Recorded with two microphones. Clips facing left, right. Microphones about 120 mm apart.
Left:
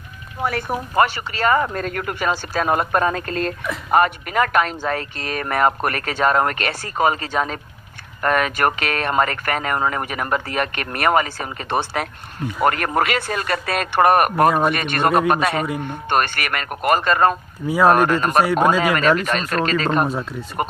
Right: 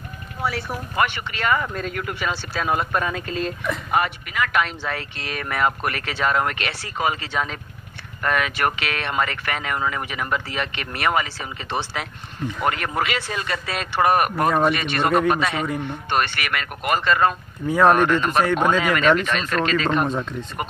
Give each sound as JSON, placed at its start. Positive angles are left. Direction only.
{"t": 0.4, "sound": "speech", "side_deg": 50}
{"t": 1.0, "sound": "speech", "side_deg": 35}
{"t": 17.6, "sound": "speech", "side_deg": 5}
{"t": 17.9, "sound": "speech", "side_deg": 40}
{"t": 20.1, "sound": "speech", "side_deg": 5}